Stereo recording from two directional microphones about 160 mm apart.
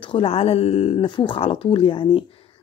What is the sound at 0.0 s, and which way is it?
Speech, 35° left (ahead or behind).